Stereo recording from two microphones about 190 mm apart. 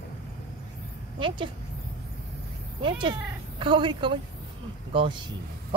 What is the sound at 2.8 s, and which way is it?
A woman's voice, 25° right (ahead or behind).